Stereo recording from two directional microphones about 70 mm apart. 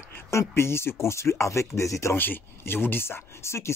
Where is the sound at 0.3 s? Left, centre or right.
Left.